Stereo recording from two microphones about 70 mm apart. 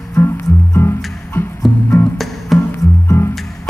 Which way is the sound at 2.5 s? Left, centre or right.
Centre.